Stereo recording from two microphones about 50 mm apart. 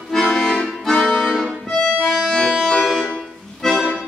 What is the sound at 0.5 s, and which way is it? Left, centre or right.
Accordion, left.